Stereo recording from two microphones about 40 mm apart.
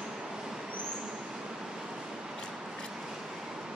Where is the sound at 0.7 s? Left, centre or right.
Right.